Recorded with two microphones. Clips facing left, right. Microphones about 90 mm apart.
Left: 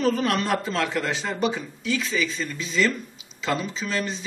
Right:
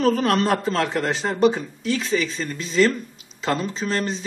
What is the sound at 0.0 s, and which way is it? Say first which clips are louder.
Speech: right 4 dB; 45° right (ahead or behind).